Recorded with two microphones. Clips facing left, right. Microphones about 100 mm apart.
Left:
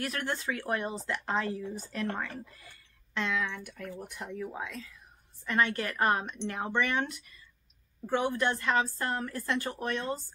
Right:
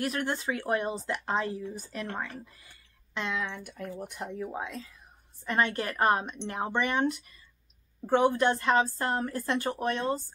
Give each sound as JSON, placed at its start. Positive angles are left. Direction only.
{"t": 0.0, "sound": "speech", "side_deg": -20}